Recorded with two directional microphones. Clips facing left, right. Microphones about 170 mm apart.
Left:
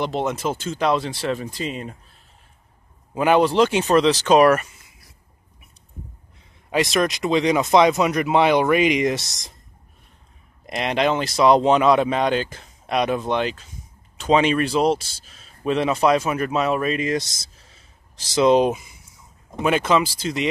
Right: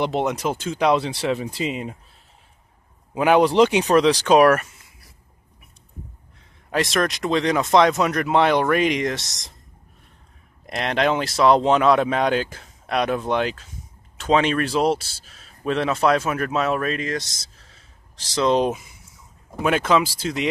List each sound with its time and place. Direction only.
0.2 s speech: centre (ahead or behind); by 2.0 s 15° right (ahead or behind)
3.2 s speech: centre (ahead or behind)
3.4 s speech: 15° right (ahead or behind); by 4.6 s centre (ahead or behind)
6.7 s speech: 5° left (ahead or behind)
10.7 s speech: 5° left (ahead or behind)
15.6 s speech: 5° left (ahead or behind)
18.3 s speech: 10° left (ahead or behind)